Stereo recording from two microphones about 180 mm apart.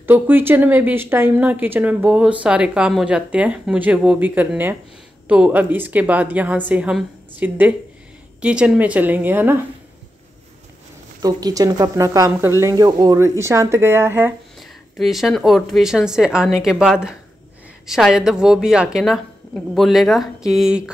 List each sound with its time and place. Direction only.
0.0 s a woman's voice: 10° right (ahead or behind)
11.2 s a woman's voice: 20° right (ahead or behind)
14.6 s a woman's voice: centre (ahead or behind)